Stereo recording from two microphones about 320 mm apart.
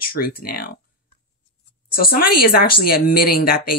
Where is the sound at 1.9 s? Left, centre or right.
Left.